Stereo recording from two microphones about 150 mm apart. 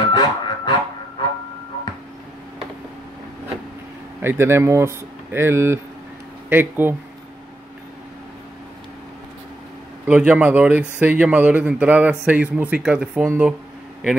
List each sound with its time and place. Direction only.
0.1 s a sound: 25° left (ahead or behind)
4.2 s speech: 15° right (ahead or behind)
10.0 s speech: 10° right (ahead or behind)